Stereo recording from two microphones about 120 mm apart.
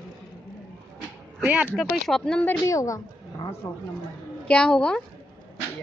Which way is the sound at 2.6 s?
25° left (ahead or behind).